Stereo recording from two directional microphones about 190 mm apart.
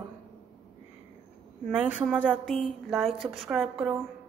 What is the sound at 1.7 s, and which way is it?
A woman's voice, 5° right (ahead or behind).